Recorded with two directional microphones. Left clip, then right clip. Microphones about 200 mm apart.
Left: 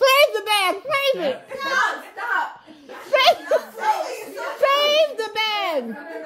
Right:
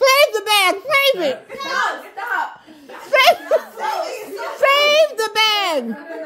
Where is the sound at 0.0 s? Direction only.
10° right (ahead or behind).